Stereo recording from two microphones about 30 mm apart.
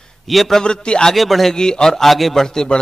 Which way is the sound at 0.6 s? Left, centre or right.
Left.